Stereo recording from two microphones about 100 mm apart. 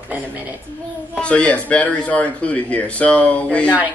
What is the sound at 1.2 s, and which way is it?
Speech, 10° left (ahead or behind).